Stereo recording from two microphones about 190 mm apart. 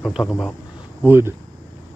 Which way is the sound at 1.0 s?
10° right (ahead or behind).